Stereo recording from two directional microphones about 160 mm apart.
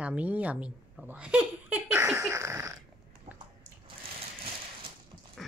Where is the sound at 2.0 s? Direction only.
20° right (ahead or behind).